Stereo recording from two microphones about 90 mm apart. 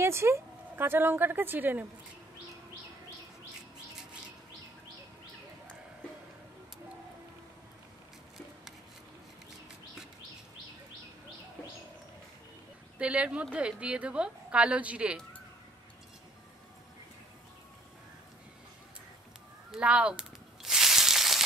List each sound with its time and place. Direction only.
0.0 s speech: 30° right (ahead or behind)
13.0 s a woman's voice: 10° right (ahead or behind)
19.7 s a sound: 10° right (ahead or behind)